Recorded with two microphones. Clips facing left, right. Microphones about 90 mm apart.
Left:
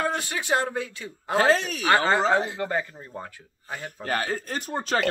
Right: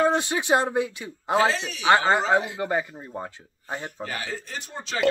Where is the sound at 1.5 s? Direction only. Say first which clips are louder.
Left 6 dB; 45° left (ahead or behind).